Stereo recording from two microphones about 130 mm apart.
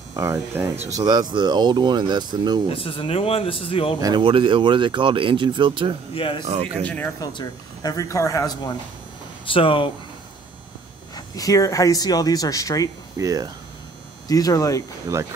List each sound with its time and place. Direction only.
0.1 s speech: 25° right (ahead or behind)
2.7 s a man's voice: 45° left (ahead or behind)
4.0 s speech: 35° right (ahead or behind)
6.1 s a man's voice: 45° left (ahead or behind)
6.4 s speech: 50° right (ahead or behind)
6.8 s speech: 10° left (ahead or behind)
7.2 s speech: 30° left (ahead or behind)
9.5 s a man's voice: 45° left (ahead or behind)
11.1 s speech: 30° left (ahead or behind)
13.2 s speech: 25° right (ahead or behind)
14.2 s speech: 30° left (ahead or behind)